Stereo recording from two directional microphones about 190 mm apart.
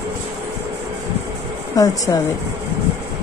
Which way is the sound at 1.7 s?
20° left (ahead or behind).